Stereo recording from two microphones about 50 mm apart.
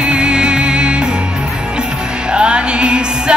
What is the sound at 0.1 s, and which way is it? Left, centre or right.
Music, centre.